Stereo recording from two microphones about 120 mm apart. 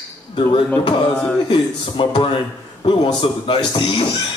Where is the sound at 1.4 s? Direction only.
45° left (ahead or behind).